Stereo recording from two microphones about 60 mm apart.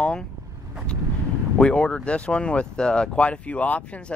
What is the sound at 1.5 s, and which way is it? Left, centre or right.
Speech, centre.